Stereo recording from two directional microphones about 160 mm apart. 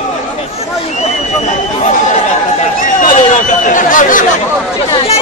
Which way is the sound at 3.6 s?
55° left (ahead or behind).